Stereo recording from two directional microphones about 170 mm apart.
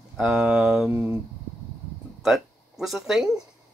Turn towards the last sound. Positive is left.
turn(degrees=0)  # may be behind; listen again after turning